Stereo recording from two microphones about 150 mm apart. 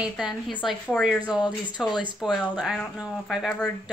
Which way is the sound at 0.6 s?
Centre (ahead or behind).